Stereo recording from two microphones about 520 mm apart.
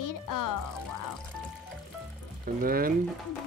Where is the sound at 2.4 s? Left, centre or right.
Centre.